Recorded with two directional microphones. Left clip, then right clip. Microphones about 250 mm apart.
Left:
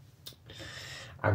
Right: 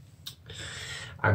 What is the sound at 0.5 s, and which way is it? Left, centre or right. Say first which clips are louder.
Owl: right 5 dB; centre.